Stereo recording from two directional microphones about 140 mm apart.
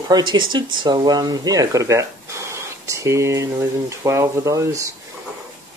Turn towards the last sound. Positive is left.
turn(degrees=-20)  # may be behind; listen again after turning